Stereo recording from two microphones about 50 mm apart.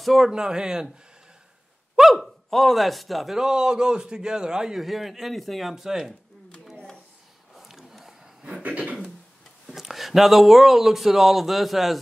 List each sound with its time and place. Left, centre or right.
0.0 s speech: centre
0.3 s a man's voice: centre
2.0 s speech: centre
3.3 s a man's voice: centre
7.5 s a sound: centre
8.6 s speech: right
9.7 s speech: centre